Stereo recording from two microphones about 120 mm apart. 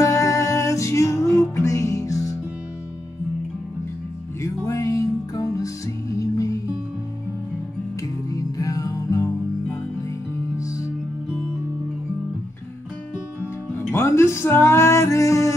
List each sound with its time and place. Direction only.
0.0 s music: 25° left (ahead or behind)
4.4 s music: 25° left (ahead or behind)
8.3 s music: 30° left (ahead or behind)
13.9 s music: 20° left (ahead or behind)